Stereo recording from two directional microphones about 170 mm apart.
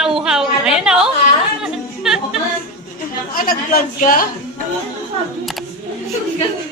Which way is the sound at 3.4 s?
60° left (ahead or behind).